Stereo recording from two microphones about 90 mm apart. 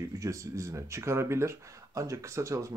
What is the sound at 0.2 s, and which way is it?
Speech, 35° right (ahead or behind).